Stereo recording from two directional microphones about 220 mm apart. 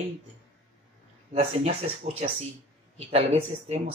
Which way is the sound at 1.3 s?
25° right (ahead or behind).